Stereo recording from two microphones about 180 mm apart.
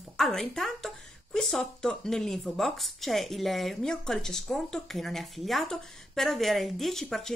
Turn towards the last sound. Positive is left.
turn(degrees=0)  # may be behind; listen again after turning